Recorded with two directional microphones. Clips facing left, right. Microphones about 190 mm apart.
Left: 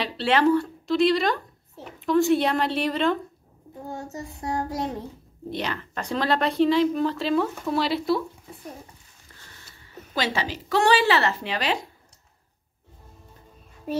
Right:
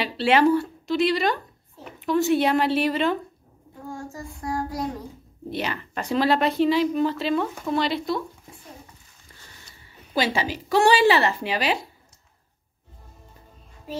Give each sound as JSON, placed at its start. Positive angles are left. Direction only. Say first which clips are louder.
{"t": 0.0, "sound": "a woman's voice", "louder": "right 2 dB", "side_deg": -10}
{"t": 3.9, "sound": "child singing", "louder": "left 1 dB", "side_deg": 20}
{"t": 5.5, "sound": "speech", "louder": "right 1 dB", "side_deg": -5}
{"t": 10.1, "sound": "speech", "louder": "right 3 dB", "side_deg": -10}